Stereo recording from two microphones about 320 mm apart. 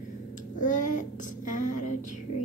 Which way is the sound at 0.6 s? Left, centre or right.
Left.